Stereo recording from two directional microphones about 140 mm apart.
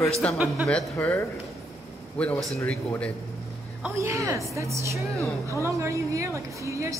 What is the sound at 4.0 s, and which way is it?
A woman's voice, 20° right (ahead or behind).